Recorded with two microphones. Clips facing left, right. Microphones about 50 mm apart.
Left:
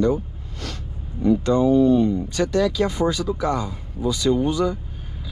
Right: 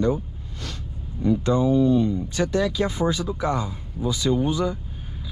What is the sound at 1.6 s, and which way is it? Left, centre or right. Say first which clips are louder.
Speech: left 3 dB; left.